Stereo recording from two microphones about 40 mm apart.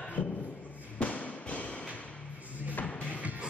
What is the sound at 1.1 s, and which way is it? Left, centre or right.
Thump, left.